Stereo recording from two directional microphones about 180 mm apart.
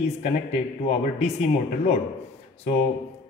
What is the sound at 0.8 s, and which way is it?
A man's voice, 35° left (ahead or behind).